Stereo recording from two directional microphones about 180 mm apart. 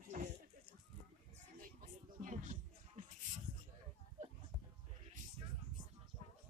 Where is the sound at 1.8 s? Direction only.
45° right (ahead or behind).